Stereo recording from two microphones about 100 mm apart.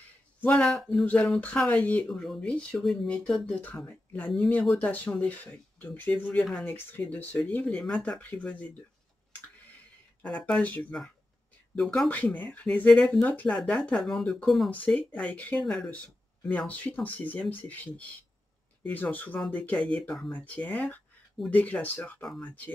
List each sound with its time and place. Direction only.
0.4 s speech: 10° left (ahead or behind)
2.0 s speech: 5° left (ahead or behind)
7.6 s speech: 5° left (ahead or behind)
10.2 s speech: 10° left (ahead or behind)
14.7 s speech: 15° left (ahead or behind)
16.4 s speech: 15° left (ahead or behind)